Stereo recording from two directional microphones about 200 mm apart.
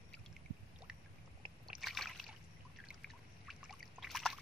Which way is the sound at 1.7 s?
Centre (ahead or behind).